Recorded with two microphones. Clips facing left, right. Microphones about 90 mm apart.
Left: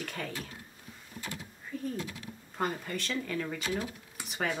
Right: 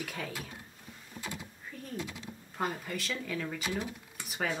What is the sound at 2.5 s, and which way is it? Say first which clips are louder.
Speech: left 1 dB; centre (ahead or behind).